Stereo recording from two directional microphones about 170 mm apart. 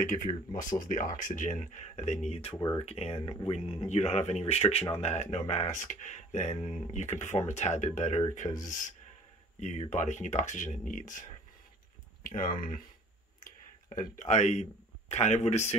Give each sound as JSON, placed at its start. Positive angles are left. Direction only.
{"t": 0.0, "sound": "speech", "side_deg": 50}